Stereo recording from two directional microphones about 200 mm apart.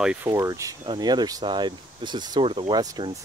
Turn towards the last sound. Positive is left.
turn(degrees=-20)  # may be behind; listen again after turning